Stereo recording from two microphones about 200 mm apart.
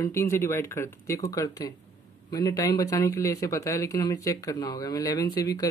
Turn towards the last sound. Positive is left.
turn(degrees=15)  # may be behind; listen again after turning